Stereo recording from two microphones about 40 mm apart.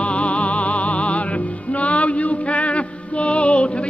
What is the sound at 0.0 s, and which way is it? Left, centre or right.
Music, left.